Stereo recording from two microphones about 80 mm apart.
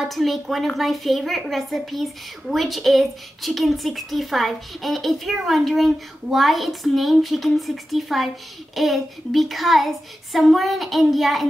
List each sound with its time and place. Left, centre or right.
0.1 s speech: centre